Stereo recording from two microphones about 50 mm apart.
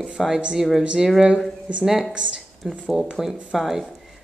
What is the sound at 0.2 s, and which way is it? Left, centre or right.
Speech, centre.